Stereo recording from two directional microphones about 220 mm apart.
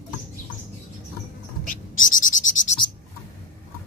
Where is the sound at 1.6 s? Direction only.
35° left (ahead or behind).